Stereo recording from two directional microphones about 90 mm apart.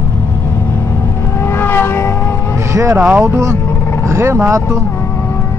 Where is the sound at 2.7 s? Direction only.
30° right (ahead or behind).